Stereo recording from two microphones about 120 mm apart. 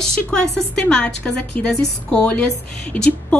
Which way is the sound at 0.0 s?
5° left (ahead or behind).